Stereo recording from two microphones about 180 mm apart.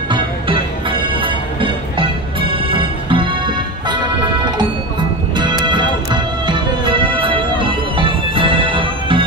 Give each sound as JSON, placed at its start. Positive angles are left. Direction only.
{"t": 0.1, "sound": "music", "side_deg": -25}
{"t": 5.3, "sound": "music", "side_deg": -25}